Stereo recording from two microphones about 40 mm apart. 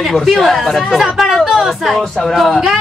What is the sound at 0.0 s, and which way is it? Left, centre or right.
Speech, centre.